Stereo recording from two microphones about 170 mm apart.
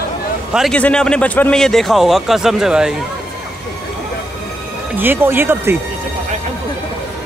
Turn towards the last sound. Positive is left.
turn(degrees=-10)  # may be behind; listen again after turning